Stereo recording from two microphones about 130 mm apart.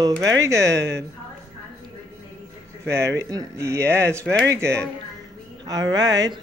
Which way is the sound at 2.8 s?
20° right (ahead or behind).